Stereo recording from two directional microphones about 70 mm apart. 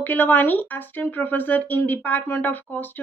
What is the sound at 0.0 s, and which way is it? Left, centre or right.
A woman's voice, left.